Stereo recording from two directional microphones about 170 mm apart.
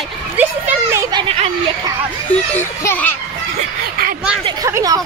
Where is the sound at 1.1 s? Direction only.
35° right (ahead or behind).